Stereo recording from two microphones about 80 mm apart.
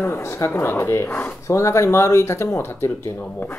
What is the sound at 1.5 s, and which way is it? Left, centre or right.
Speech, left.